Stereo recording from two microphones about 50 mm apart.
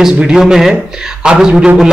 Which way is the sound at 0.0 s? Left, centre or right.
Centre.